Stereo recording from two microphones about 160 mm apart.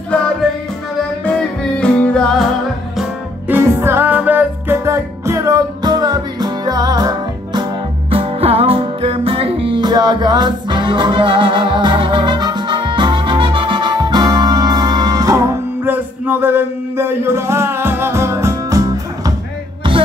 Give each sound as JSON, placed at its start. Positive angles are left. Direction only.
{"t": 1.2, "sound": "music", "side_deg": 5}
{"t": 3.0, "sound": "music", "side_deg": -10}
{"t": 8.1, "sound": "music", "side_deg": -35}